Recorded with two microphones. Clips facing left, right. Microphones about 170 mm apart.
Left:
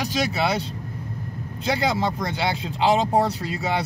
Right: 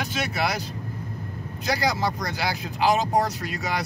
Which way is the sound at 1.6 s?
25° left (ahead or behind).